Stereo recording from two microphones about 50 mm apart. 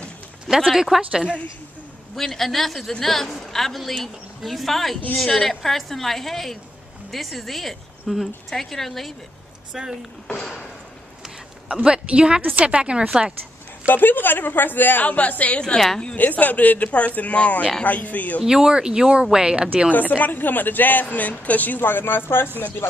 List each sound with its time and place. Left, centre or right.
0.7 s speech: centre
2.1 s a man's voice: centre
9.7 s speech: centre
11.7 s speech: centre
12.4 s a woman's voice: right
12.6 s speech: right
13.8 s a woman's voice: left
15.6 s a woman's voice: centre
16.2 s a woman's voice: left
18.4 s speech: centre
19.9 s a woman's voice: left